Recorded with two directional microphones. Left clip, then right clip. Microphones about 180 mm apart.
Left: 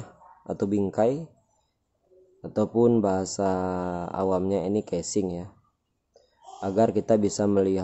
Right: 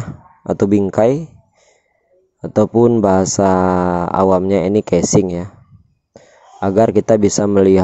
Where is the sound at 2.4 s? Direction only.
40° right (ahead or behind).